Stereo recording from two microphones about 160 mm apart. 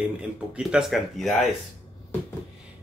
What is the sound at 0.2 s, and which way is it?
Speech, 5° right (ahead or behind).